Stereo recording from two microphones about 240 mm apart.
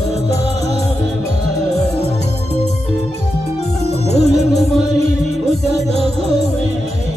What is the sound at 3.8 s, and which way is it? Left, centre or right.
Music, left.